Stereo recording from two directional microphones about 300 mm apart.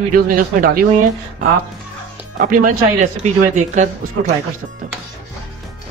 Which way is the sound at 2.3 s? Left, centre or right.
Right.